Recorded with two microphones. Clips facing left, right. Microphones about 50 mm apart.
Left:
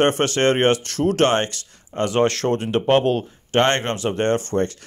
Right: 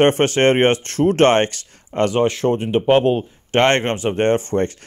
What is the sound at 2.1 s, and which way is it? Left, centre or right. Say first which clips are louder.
Speech: left 1 dB; centre.